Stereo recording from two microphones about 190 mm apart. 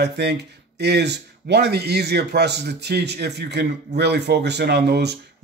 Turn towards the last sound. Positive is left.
turn(degrees=-60)  # may be behind; listen again after turning